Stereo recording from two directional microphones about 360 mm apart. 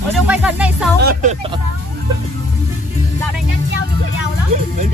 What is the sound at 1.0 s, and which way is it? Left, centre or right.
Speech, right.